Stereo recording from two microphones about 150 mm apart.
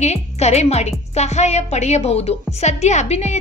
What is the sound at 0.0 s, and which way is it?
A woman's voice, 45° left (ahead or behind).